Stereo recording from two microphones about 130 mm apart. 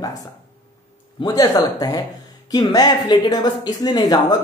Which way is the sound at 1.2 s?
30° left (ahead or behind).